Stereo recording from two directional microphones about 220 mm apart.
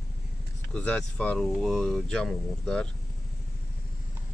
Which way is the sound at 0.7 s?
5° left (ahead or behind).